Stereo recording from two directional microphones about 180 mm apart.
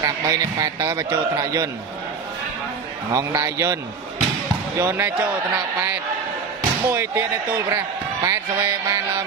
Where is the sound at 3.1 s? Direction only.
15° right (ahead or behind).